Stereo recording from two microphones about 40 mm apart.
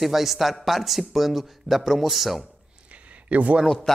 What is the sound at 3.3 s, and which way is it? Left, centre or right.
Speech, right.